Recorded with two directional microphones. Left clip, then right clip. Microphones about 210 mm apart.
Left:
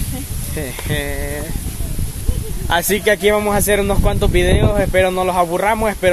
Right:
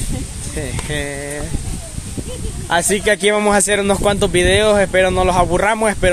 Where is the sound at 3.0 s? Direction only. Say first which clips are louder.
Even; 15° right (ahead or behind).